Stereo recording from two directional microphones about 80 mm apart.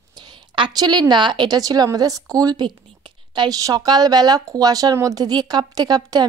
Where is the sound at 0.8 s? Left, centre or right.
Right.